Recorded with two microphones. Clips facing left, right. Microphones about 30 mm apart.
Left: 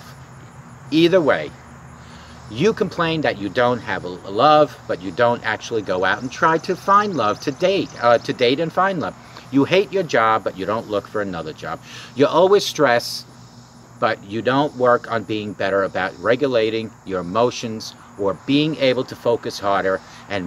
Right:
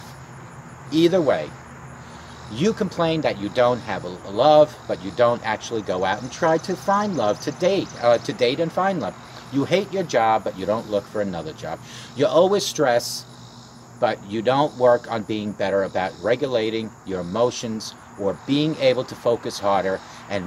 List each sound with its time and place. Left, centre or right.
0.8 s speech: left
2.5 s speech: centre
4.8 s speech: left
5.1 s speech: centre
12.8 s speech: left
14.3 s speech: centre